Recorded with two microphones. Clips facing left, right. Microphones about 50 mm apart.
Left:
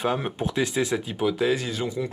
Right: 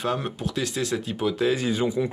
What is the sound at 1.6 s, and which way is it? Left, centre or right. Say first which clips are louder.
Speech: right 4 dB; centre.